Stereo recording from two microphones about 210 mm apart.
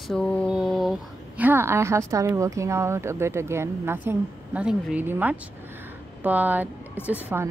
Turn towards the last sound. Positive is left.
turn(degrees=-10)  # may be behind; listen again after turning